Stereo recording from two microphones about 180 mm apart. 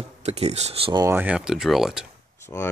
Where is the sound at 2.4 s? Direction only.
15° left (ahead or behind).